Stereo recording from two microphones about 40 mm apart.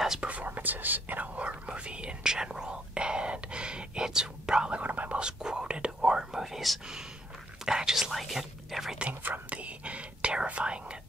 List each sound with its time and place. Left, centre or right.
0.2 s whispering: right
4.8 s whispering: right
5.1 s whispering: centre
6.4 s whispering: centre
9.5 s whispering: right